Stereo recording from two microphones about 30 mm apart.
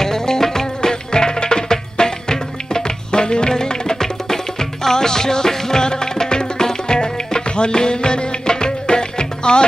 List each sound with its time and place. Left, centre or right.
0.0 s music: centre